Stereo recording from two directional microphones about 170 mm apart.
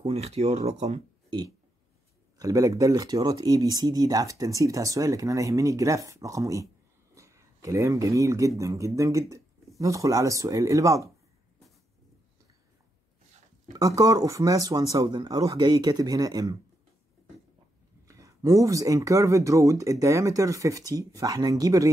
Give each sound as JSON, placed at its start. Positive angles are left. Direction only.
{"t": 0.0, "sound": "speech", "side_deg": -35}
{"t": 2.3, "sound": "speech", "side_deg": -20}
{"t": 13.7, "sound": "speech", "side_deg": -20}
{"t": 18.0, "sound": "speech", "side_deg": -20}